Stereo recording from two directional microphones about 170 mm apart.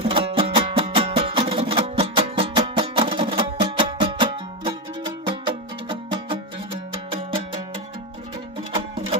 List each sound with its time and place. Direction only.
0.0 s music: 30° right (ahead or behind)